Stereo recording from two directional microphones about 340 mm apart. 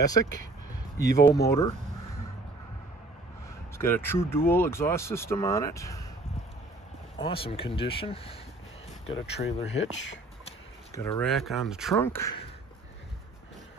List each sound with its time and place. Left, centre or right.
0.0 s speech: centre
3.7 s speech: centre
7.2 s speech: centre
9.4 s speech: centre
11.0 s speech: centre